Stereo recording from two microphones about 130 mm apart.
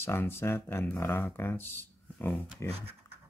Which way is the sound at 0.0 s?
20° left (ahead or behind).